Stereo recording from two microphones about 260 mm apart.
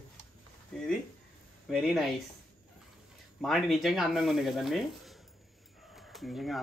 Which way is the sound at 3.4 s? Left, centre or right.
Centre.